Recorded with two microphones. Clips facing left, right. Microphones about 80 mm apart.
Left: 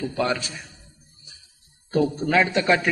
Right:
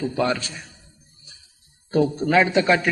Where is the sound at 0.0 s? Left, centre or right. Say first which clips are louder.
Right 2 dB; right.